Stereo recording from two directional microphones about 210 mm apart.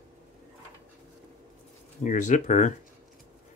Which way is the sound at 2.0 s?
35° left (ahead or behind).